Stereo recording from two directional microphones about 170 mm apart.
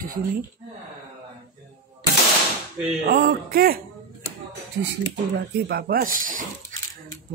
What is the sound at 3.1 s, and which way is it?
Speech, 65° right (ahead or behind).